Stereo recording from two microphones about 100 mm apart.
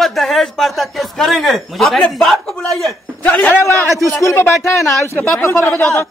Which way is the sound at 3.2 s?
15° left (ahead or behind).